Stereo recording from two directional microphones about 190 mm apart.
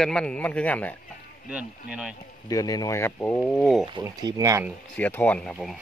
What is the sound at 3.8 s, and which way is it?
Speech, 20° right (ahead or behind).